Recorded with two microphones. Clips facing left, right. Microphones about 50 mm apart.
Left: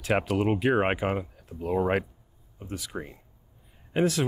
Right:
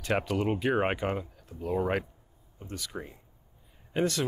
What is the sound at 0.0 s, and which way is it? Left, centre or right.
Speech, centre.